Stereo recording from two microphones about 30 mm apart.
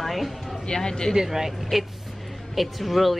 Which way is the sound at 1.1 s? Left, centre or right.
Centre.